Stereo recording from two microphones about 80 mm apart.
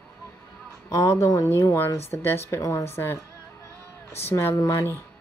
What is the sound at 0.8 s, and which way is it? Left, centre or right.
Speech, left.